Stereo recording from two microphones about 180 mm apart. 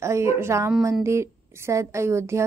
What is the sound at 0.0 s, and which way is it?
A woman's voice, 15° right (ahead or behind).